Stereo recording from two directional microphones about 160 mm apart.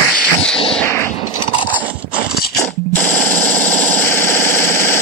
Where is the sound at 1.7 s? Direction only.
10° right (ahead or behind).